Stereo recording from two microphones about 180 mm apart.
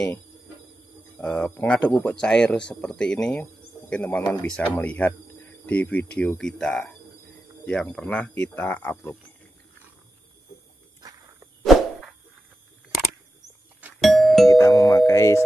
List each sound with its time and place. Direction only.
1.2 s speech: 5° left (ahead or behind)
11.6 s insect: centre (ahead or behind)
13.9 s music: centre (ahead or behind)
14.5 s doorbell: 20° left (ahead or behind)